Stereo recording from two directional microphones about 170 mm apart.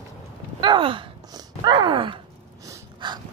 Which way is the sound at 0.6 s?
30° right (ahead or behind).